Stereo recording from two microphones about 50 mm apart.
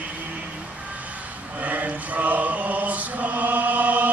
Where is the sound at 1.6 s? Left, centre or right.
Right.